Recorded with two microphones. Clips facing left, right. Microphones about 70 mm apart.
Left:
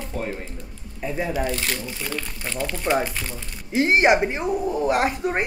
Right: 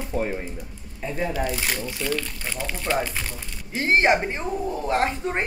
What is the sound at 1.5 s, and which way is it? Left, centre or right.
Speech, centre.